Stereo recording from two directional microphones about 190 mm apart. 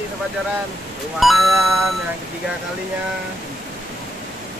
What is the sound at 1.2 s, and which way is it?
Speech, centre (ahead or behind).